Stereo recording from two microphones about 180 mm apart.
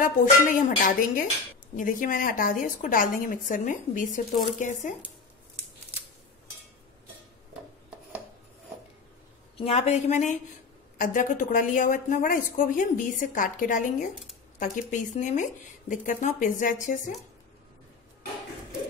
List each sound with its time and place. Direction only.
0.0 s a woman's voice: 50° left (ahead or behind)
9.6 s a woman's voice: 35° left (ahead or behind)